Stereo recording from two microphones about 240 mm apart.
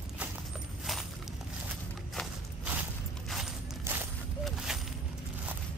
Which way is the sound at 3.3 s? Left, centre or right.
Centre.